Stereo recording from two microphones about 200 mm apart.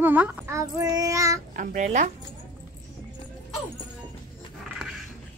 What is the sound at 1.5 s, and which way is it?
Speech, 40° right (ahead or behind).